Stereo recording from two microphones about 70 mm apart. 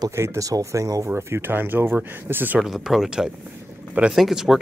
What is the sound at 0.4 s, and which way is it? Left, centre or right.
Speech, right.